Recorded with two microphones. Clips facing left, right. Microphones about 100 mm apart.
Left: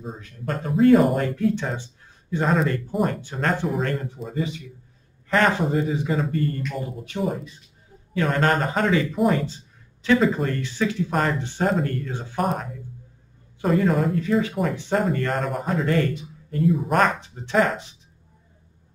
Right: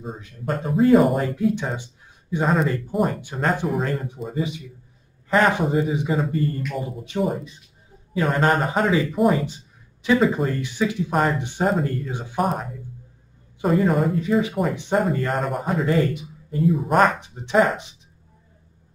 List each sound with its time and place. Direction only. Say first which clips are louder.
0.7 s speech: even; 5° right (ahead or behind)
2.4 s speech: right 1 dB; 5° right (ahead or behind)
4.4 s speech: even; 15° right (ahead or behind)
12.4 s speech: right 2 dB; centre (ahead or behind)
16.6 s speech: right 2 dB; centre (ahead or behind)
17.2 s speech: right 2 dB; 15° right (ahead or behind)